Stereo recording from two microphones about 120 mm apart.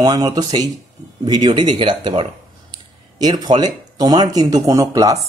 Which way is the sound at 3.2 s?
35° right (ahead or behind).